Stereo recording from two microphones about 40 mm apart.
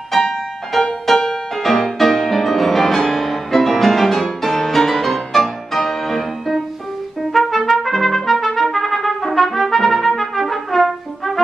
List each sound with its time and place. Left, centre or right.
0.1 s music: centre
7.3 s trumpet: centre